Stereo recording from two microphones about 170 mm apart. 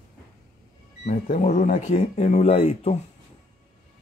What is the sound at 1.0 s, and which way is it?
Speech, 40° left (ahead or behind).